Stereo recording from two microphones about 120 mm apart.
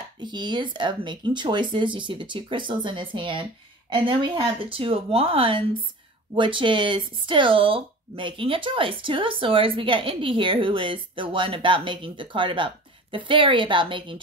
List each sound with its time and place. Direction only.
0.2 s speech: 40° right (ahead or behind)